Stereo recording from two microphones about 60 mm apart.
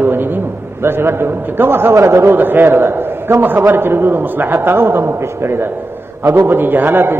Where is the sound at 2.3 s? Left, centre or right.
Right.